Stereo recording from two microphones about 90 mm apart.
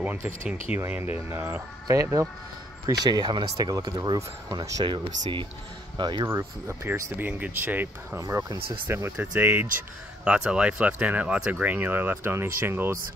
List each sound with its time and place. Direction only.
0.7 s speech: 25° right (ahead or behind)
1.9 s speech: 40° right (ahead or behind)
2.9 s speech: 50° right (ahead or behind)
4.8 s speech: 60° right (ahead or behind)
6.2 s speech: 30° right (ahead or behind)
8.5 s speech: 90° right
8.8 s speech: 25° right (ahead or behind)